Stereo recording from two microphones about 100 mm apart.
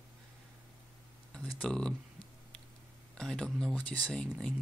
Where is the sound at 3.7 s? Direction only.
15° left (ahead or behind).